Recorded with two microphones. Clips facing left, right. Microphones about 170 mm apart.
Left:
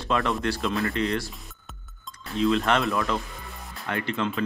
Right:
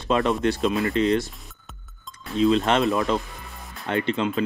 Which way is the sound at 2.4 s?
20° right (ahead or behind).